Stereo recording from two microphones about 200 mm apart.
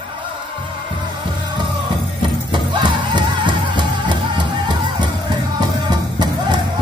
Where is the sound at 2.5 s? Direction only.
25° right (ahead or behind).